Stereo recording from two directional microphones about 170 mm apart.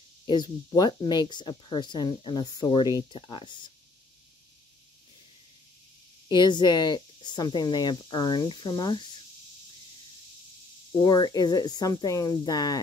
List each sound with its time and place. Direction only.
0.3 s speech: 25° left (ahead or behind)
6.2 s speech: 25° left (ahead or behind)
11.0 s speech: 25° left (ahead or behind)